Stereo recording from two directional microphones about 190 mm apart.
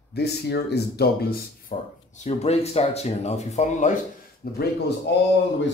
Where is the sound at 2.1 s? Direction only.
35° left (ahead or behind).